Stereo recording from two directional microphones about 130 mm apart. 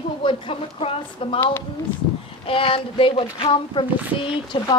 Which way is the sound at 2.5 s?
45° left (ahead or behind).